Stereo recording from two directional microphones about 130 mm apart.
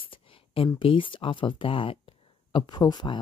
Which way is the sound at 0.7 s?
40° left (ahead or behind).